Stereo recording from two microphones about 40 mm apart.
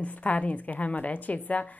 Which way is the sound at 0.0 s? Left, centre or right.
Left.